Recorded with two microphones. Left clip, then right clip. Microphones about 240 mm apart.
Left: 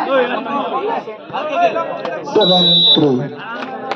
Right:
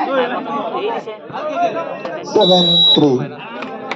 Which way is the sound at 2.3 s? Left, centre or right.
Centre.